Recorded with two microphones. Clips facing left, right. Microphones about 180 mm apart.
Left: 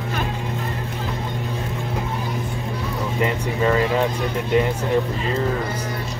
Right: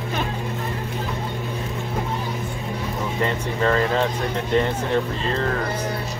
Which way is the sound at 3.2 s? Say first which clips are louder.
Left 2 dB; 10° left (ahead or behind).